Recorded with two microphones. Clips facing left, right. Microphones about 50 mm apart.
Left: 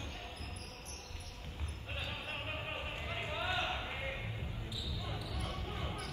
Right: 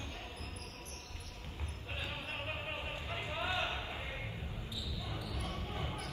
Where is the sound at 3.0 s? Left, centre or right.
Left.